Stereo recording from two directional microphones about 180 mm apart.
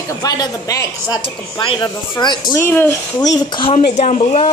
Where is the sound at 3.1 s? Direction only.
20° left (ahead or behind).